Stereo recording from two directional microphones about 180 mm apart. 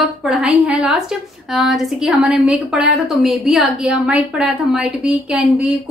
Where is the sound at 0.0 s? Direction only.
Centre (ahead or behind).